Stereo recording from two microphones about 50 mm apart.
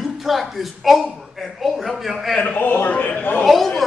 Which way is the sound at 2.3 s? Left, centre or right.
Left.